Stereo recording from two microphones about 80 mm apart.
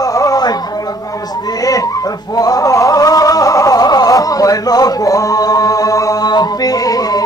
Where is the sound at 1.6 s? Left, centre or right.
Left.